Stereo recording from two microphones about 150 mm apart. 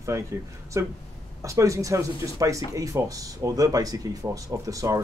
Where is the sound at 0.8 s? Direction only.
20° right (ahead or behind).